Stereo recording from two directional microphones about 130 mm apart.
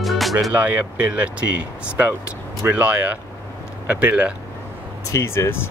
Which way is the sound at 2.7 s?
10° right (ahead or behind).